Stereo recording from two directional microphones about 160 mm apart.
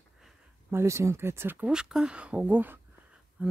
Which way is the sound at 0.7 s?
15° right (ahead or behind).